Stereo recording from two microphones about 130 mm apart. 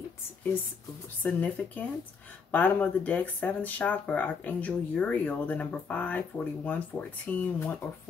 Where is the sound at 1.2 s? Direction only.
10° left (ahead or behind).